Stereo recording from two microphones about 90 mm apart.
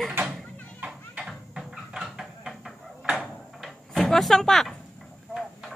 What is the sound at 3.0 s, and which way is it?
Door, 10° right (ahead or behind).